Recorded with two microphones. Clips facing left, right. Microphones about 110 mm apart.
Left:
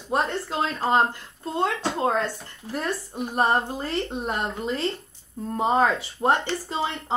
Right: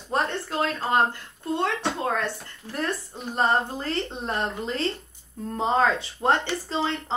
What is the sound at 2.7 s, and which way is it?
A woman's voice, 15° left (ahead or behind).